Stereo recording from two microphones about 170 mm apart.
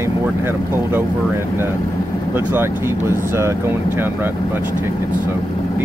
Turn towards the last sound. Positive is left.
turn(degrees=-15)  # may be behind; listen again after turning